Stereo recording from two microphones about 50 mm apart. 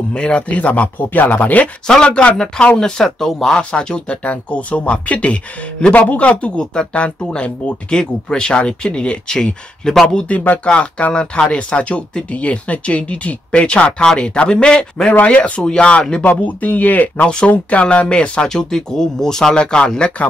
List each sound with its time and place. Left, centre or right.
0.1 s speech: centre
1.9 s speech: centre
3.5 s speech: centre
16.3 s speech: left